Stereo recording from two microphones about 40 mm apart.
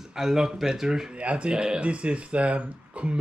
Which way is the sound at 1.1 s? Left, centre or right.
Right.